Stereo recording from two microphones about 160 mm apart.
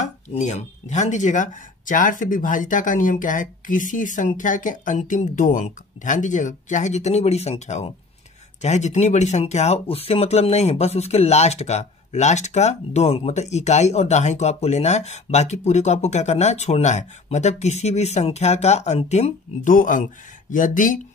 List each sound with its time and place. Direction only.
0.0 s speech: 45° left (ahead or behind)